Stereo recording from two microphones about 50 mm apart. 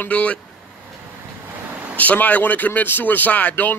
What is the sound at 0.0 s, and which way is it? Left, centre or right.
Speech, left.